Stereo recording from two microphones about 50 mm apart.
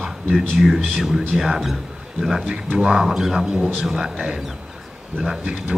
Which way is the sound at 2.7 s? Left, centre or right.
Centre.